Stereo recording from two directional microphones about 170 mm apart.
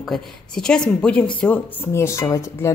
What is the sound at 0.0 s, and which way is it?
Speech, centre (ahead or behind).